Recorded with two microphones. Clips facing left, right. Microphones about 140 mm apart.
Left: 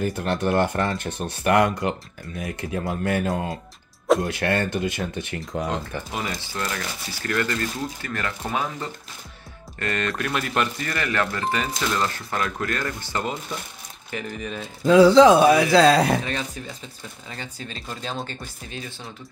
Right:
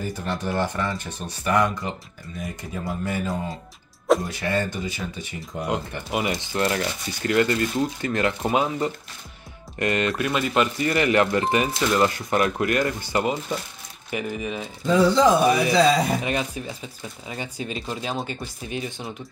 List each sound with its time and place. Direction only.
0.0 s speech: 65° left (ahead or behind)
5.7 s speech: 10° right (ahead or behind)
10.9 s speech: 15° right (ahead or behind)
14.9 s speech: 90° left
16.3 s speech: 15° right (ahead or behind)